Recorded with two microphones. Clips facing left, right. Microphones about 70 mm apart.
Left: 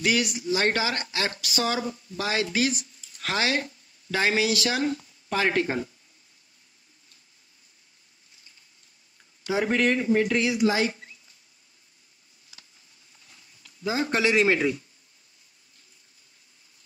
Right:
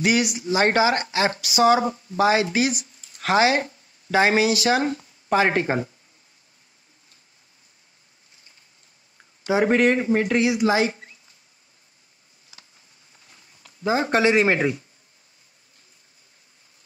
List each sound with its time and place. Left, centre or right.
0.0 s speech: centre
0.4 s speech: right
3.0 s a sound: right
4.5 s speech: right
9.4 s speech: right
13.3 s speech: right